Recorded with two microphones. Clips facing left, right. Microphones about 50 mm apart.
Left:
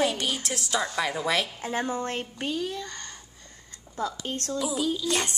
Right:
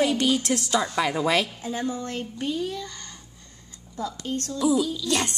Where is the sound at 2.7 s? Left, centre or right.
Left.